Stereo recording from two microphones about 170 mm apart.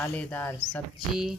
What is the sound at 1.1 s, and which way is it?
Speech, centre (ahead or behind).